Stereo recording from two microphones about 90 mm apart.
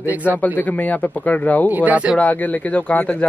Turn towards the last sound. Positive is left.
turn(degrees=15)  # may be behind; listen again after turning